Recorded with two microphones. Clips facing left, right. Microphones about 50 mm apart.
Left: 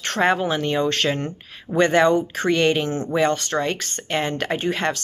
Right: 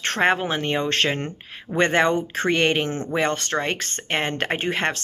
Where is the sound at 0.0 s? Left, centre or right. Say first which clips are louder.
Left 1 dB; right.